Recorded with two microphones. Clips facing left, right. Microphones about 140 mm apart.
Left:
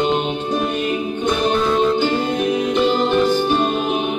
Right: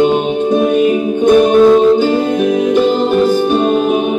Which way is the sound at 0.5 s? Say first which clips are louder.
Right 11 dB; 50° right (ahead or behind).